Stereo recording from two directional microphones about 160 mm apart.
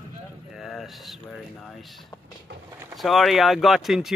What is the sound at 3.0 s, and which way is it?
Speech, centre (ahead or behind).